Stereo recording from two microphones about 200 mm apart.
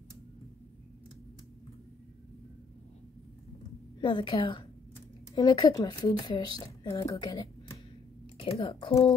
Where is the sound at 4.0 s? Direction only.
25° left (ahead or behind).